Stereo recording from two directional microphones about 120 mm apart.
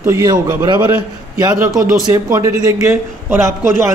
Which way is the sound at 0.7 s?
35° right (ahead or behind).